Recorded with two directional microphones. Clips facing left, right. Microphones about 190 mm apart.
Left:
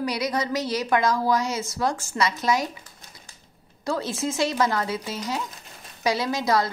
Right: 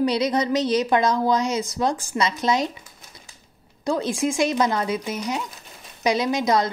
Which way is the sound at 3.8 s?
15° right (ahead or behind).